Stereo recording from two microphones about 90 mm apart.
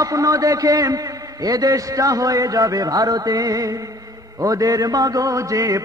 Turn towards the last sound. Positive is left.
turn(degrees=-40)  # may be behind; listen again after turning